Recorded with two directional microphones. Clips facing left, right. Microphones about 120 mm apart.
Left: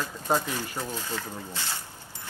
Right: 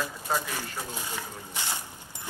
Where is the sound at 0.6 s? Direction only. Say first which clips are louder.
Left 3 dB; 15° right (ahead or behind).